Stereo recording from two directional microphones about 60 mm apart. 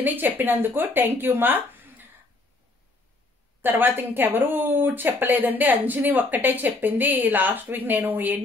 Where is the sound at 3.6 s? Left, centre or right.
Right.